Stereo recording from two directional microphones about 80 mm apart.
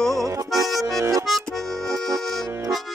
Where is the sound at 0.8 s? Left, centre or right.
Right.